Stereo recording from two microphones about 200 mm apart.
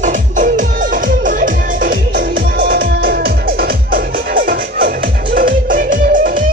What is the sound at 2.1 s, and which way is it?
Music, 45° right (ahead or behind).